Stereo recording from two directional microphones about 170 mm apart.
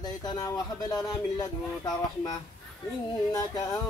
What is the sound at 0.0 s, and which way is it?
Speech, 25° left (ahead or behind).